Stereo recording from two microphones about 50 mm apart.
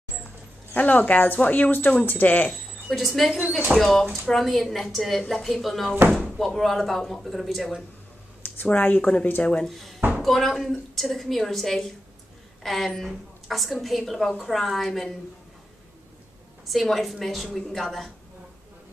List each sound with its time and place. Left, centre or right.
0.7 s speech: left
2.5 s a woman's voice: centre
8.6 s speech: left
9.7 s a woman's voice: centre
16.6 s a woman's voice: centre